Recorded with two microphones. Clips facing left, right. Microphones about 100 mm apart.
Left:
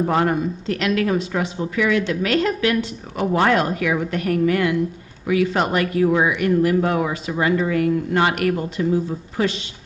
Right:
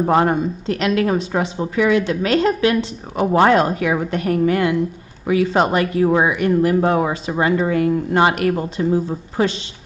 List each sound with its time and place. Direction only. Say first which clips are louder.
0.0 s speech: right 3 dB; 30° right (ahead or behind)